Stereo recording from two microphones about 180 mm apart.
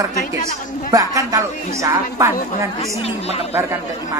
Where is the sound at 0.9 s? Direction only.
20° right (ahead or behind).